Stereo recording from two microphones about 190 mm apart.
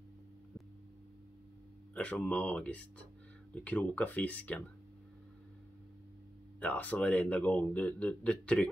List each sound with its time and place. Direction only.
2.0 s speech: 5° left (ahead or behind)
6.6 s speech: 10° left (ahead or behind)